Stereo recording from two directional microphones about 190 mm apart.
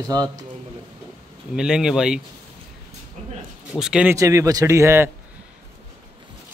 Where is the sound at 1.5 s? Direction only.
5° right (ahead or behind).